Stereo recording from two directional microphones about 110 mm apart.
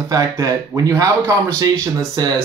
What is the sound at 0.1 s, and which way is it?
Speech, 30° right (ahead or behind).